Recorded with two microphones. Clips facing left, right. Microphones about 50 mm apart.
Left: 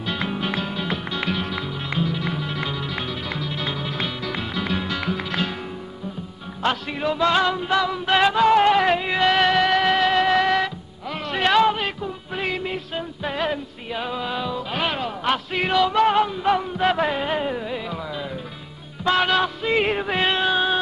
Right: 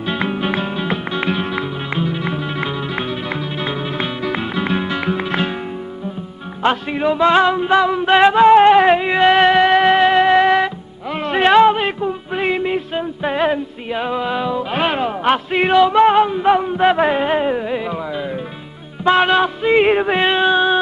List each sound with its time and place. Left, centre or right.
0.0 s music: right
6.6 s music: right